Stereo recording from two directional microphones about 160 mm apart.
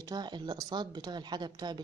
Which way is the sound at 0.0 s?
25° right (ahead or behind).